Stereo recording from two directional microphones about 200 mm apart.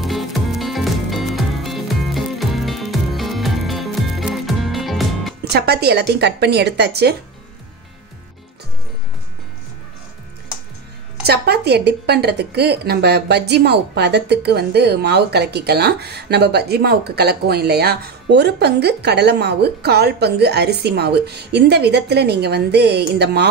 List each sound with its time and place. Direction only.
0.0 s music: centre (ahead or behind)
5.5 s a woman's voice: 55° right (ahead or behind)
11.2 s a woman's voice: 55° right (ahead or behind)